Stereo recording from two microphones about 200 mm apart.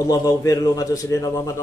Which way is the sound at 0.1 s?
15° left (ahead or behind).